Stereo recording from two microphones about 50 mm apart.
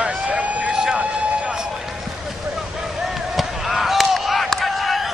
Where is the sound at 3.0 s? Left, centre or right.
Centre.